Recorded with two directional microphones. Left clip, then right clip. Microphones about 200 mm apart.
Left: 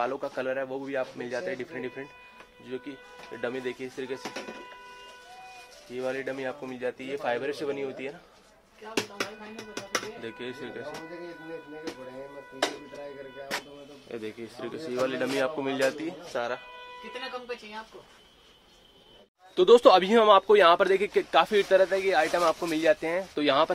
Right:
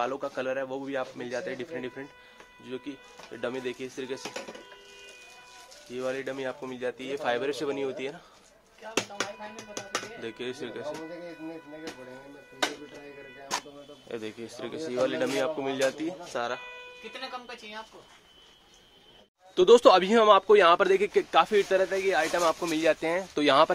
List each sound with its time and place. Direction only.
0.0 s a man's voice: 5° right (ahead or behind)
5.9 s a man's voice: 15° right (ahead or behind)
10.2 s speech: 25° right (ahead or behind)
14.0 s a man's voice: 25° right (ahead or behind)
19.5 s a man's voice: 10° right (ahead or behind)